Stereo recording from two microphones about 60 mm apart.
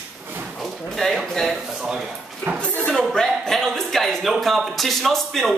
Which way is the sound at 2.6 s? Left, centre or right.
Centre.